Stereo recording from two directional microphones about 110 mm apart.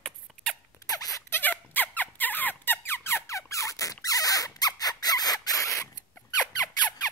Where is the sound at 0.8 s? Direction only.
35° left (ahead or behind).